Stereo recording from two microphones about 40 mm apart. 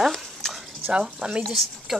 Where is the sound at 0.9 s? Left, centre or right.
Right.